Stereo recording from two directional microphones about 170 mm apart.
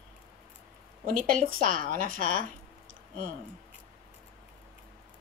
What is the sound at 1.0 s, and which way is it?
Speech, 55° right (ahead or behind).